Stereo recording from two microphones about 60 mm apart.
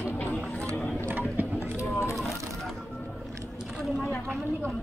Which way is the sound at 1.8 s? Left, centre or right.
Left.